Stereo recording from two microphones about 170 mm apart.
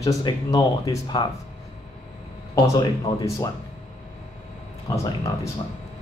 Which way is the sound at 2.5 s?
20° left (ahead or behind).